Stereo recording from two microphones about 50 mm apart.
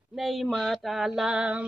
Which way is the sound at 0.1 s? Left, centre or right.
Centre.